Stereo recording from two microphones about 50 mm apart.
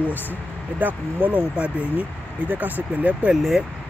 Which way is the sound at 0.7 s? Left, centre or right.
Right.